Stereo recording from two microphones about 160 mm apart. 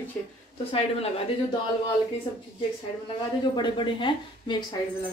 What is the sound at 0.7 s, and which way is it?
Speech, 40° left (ahead or behind).